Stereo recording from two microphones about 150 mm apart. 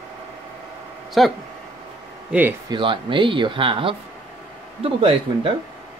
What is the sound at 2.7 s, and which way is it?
Speech, 35° right (ahead or behind).